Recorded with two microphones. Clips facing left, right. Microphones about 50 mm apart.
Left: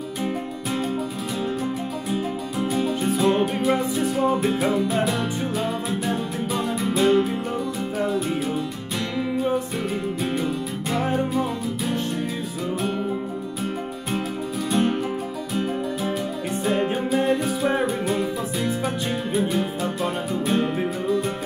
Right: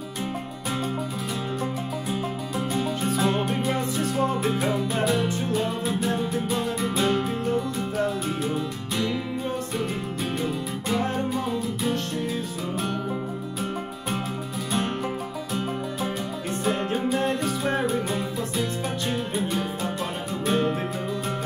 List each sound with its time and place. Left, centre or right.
2.0 s music: centre
10.4 s music: centre
14.7 s music: centre